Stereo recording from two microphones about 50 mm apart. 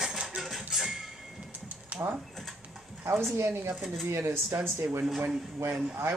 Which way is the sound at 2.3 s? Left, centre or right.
Centre.